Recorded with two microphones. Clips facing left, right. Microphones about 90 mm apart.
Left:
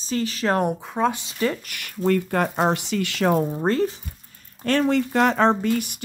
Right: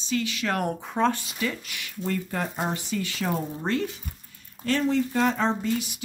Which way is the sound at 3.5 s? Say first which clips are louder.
Left 6 dB; 40° left (ahead or behind).